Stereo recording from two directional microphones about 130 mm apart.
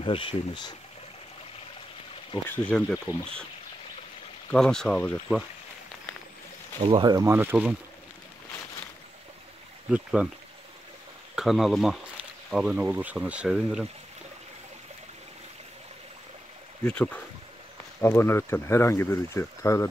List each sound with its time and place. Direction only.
0.0 s speech: 45° left (ahead or behind)
2.5 s speech: 15° left (ahead or behind)
4.5 s speech: 5° left (ahead or behind)
6.8 s speech: 35° right (ahead or behind)
7.3 s speech: 15° right (ahead or behind)
9.8 s speech: 10° right (ahead or behind)
11.3 s speech: centre (ahead or behind)
16.8 s speech: 10° left (ahead or behind)